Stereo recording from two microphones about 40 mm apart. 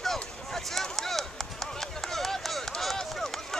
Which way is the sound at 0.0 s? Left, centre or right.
Centre.